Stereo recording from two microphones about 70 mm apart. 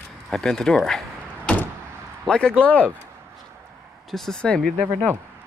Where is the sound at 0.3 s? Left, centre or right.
Centre.